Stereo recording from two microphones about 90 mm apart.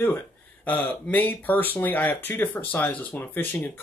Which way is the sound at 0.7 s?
20° left (ahead or behind).